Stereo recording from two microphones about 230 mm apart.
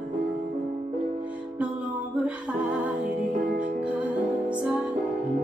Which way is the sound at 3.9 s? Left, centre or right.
Centre.